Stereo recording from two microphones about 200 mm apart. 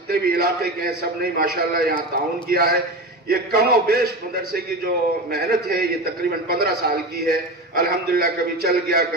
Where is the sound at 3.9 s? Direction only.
50° right (ahead or behind).